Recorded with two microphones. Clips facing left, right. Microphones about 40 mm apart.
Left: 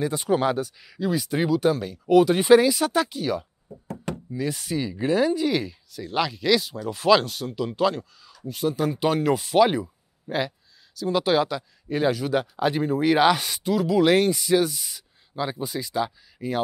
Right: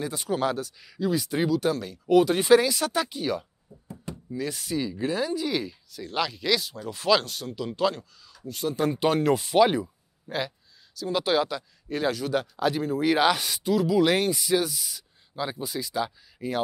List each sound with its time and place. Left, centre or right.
0.0 s speech: centre
3.8 s knock: left
4.3 s speech: centre